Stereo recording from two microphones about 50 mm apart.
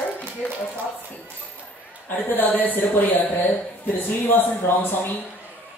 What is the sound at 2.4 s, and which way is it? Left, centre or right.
A woman's voice, left.